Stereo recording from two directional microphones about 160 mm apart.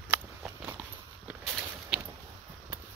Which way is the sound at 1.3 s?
10° right (ahead or behind).